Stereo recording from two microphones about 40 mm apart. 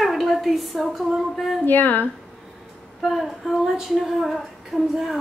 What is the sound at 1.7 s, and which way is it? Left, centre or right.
Speech, left.